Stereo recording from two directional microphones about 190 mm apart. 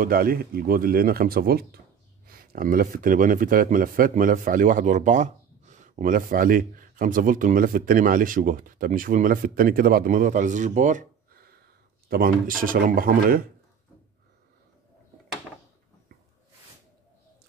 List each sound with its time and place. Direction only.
0.0 s speech: 50° right (ahead or behind)